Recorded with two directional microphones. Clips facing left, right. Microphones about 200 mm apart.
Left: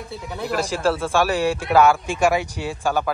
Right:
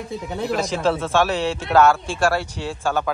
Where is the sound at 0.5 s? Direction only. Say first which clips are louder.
Even; 5° left (ahead or behind).